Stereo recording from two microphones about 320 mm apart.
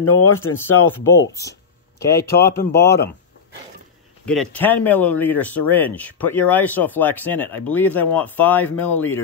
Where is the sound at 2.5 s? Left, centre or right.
Left.